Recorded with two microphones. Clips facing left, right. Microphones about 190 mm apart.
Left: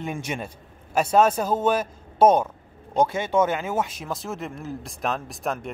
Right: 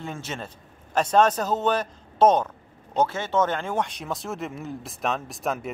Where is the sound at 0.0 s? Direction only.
15° left (ahead or behind).